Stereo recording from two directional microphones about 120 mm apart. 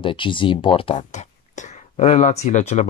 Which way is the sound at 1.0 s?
80° left.